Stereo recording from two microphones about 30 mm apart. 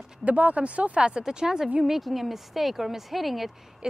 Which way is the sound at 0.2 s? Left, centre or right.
Right.